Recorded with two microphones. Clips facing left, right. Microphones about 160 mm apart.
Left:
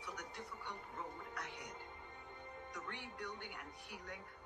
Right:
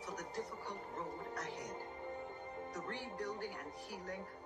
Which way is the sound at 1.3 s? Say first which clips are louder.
Right 5 dB; 35° right (ahead or behind).